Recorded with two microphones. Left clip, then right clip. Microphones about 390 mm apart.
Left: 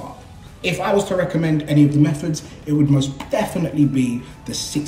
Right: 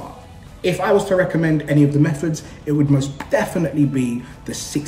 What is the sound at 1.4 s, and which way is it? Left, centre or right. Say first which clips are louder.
A man's voice: even; centre.